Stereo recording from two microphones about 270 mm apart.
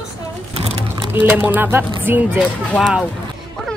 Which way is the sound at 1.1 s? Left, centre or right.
Centre.